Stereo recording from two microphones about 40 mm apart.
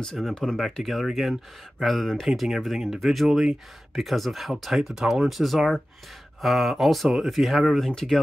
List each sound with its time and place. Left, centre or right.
0.0 s speech: centre
0.7 s speech: centre
2.2 s speech: centre
7.9 s speech: centre